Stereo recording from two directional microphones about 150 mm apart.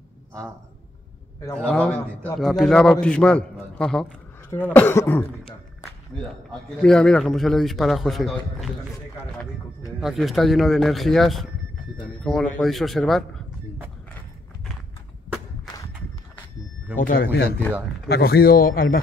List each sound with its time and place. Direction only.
1.5 s a man's voice: 10° left (ahead or behind)
6.8 s a man's voice: 5° left (ahead or behind)
9.9 s a man's voice: centre (ahead or behind)
16.9 s speech: 65° left (ahead or behind)
18.0 s a man's voice: 90° left; by 18.9 s 70° left (ahead or behind)